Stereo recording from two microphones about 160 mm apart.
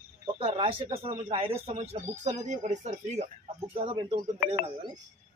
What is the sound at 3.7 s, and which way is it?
Speech, 35° right (ahead or behind).